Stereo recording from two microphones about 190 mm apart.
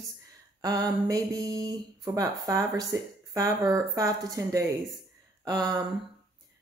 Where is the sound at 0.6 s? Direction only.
20° right (ahead or behind).